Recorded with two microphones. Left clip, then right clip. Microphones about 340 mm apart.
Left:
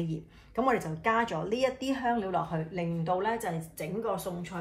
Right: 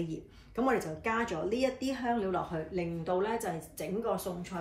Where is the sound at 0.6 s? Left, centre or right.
Left.